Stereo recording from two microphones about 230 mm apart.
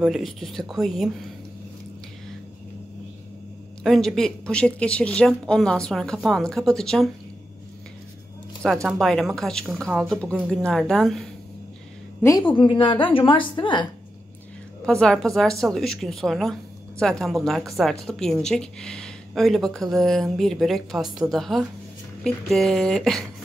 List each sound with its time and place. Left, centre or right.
0.0 s a woman's voice: centre
3.8 s a woman's voice: centre
8.8 s a woman's voice: centre
12.2 s a woman's voice: centre
14.9 s a woman's voice: centre